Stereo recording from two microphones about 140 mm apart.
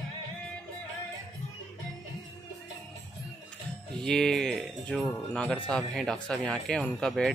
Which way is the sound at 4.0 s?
5° left (ahead or behind).